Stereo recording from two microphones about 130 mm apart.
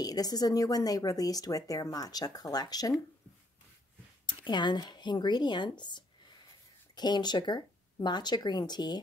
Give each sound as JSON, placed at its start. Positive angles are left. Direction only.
{"t": 0.0, "sound": "speech", "side_deg": 30}
{"t": 4.5, "sound": "speech", "side_deg": 35}